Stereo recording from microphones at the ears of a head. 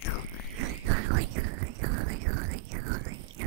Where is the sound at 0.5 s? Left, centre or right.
Right.